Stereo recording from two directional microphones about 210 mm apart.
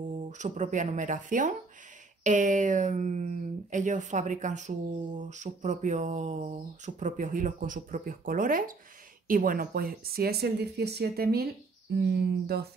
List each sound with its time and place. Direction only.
0.3 s speech: 35° right (ahead or behind)